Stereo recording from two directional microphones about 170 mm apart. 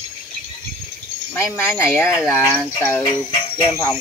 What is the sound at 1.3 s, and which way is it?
Speech, 15° left (ahead or behind).